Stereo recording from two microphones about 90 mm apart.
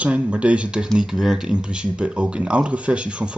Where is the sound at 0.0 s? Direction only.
15° right (ahead or behind).